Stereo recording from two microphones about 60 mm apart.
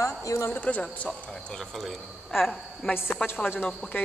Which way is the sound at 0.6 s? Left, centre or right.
Left.